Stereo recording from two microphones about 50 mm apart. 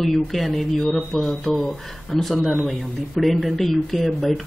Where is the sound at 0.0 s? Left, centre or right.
Centre.